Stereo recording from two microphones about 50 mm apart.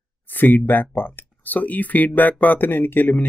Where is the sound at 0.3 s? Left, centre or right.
Left.